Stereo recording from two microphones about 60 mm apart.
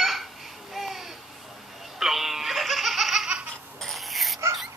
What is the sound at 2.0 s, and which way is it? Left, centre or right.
Baby laughter, centre.